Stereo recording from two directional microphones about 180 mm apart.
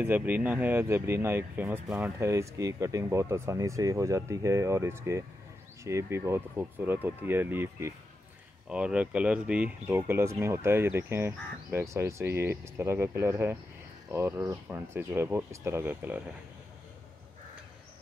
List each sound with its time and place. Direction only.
0.0 s speech: 10° right (ahead or behind)